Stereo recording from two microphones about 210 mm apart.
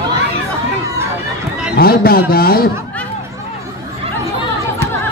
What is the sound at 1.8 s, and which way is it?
Speech, 45° left (ahead or behind).